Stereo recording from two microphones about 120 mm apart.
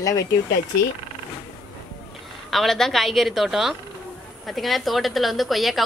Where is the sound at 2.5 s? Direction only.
Centre (ahead or behind).